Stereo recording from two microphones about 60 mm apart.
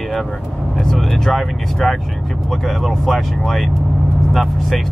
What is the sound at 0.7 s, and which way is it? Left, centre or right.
Speech, centre.